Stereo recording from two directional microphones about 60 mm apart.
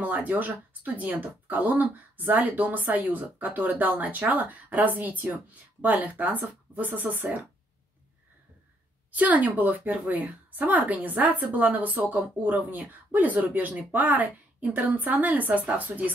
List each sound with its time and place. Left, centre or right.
0.0 s speech: right
9.1 s speech: right